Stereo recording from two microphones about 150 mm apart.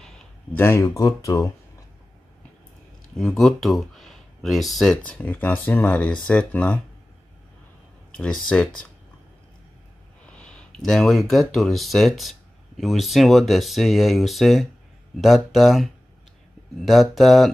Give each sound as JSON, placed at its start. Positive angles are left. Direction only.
{"t": 0.0, "sound": "speech", "side_deg": 10}
{"t": 3.2, "sound": "speech", "side_deg": 0}
{"t": 8.2, "sound": "speech", "side_deg": 5}
{"t": 10.2, "sound": "speech", "side_deg": 5}